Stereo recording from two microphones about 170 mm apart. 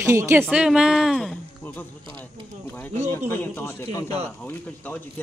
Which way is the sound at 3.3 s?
10° left (ahead or behind).